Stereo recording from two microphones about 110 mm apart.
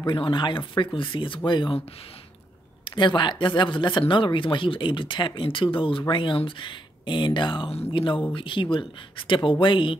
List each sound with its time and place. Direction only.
0.0 s speech: 45° left (ahead or behind)
2.8 s speech: 45° left (ahead or behind)